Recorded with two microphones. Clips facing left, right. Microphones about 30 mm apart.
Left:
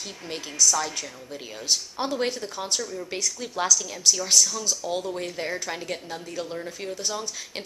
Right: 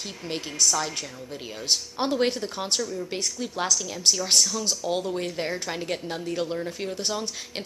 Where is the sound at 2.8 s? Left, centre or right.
Centre.